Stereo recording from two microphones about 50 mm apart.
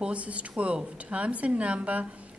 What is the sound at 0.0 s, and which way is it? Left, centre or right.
A woman's voice, right.